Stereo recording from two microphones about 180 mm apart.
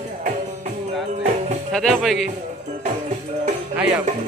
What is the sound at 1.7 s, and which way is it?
Speech, centre (ahead or behind).